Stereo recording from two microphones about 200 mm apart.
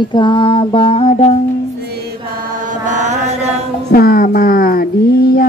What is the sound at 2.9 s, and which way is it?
Chant, 35° right (ahead or behind).